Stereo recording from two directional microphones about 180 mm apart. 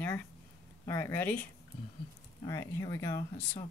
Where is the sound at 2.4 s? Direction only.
20° left (ahead or behind).